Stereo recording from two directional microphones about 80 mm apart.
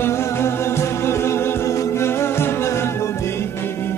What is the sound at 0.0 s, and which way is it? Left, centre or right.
Music, left.